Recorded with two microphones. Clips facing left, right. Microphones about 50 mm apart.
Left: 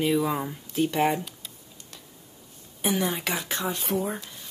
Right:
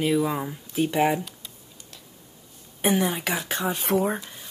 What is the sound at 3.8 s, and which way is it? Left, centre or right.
Speech, right.